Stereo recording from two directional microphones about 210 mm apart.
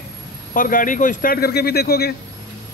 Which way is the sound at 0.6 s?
40° left (ahead or behind).